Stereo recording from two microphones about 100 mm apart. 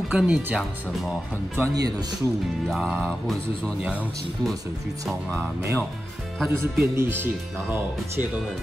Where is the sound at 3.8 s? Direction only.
15° right (ahead or behind).